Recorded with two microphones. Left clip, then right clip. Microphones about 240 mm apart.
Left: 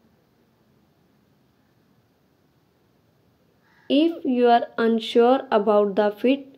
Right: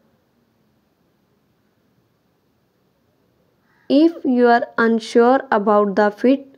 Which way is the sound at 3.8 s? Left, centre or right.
Right.